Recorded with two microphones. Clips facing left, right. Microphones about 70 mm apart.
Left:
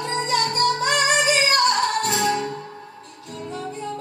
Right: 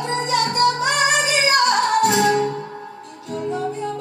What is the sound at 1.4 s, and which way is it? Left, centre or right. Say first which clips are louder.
Music: right 3 dB; right.